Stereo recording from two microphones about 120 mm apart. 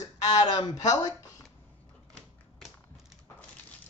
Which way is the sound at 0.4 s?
35° left (ahead or behind).